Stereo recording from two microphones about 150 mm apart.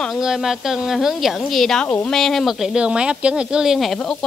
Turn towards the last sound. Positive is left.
turn(degrees=5)  # may be behind; listen again after turning